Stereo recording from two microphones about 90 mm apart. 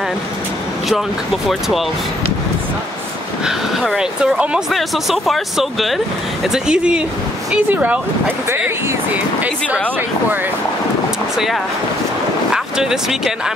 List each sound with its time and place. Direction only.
0.8 s speech: centre (ahead or behind)
3.4 s speech: 5° right (ahead or behind)
8.5 s speech: 25° right (ahead or behind)
11.3 s speech: centre (ahead or behind)